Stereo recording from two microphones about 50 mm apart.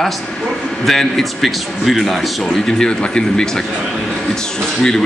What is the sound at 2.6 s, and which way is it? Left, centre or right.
Speech, centre.